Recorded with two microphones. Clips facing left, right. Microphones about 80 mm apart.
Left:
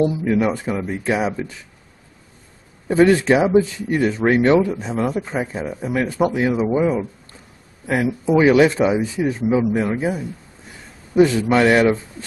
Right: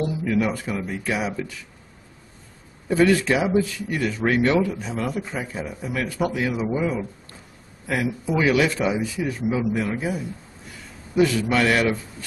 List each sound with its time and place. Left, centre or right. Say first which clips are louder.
0.0 s speech: left 5 dB; left
2.9 s speech: left 5 dB; left